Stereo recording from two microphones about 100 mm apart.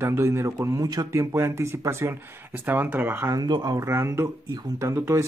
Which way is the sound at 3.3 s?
45° right (ahead or behind).